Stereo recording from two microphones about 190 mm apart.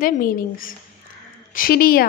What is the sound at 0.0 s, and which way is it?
A woman's voice, 45° left (ahead or behind).